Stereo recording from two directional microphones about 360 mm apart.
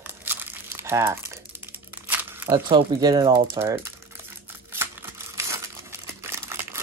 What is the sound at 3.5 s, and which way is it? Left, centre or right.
Speech, centre.